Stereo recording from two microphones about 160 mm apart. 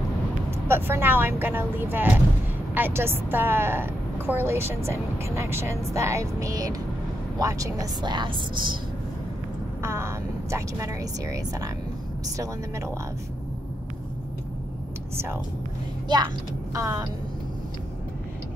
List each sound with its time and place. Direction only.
0.5 s a woman's voice: 15° right (ahead or behind)
9.8 s speech: 15° right (ahead or behind)
15.1 s a woman's voice: 15° right (ahead or behind)
16.1 s a woman's voice: 25° right (ahead or behind)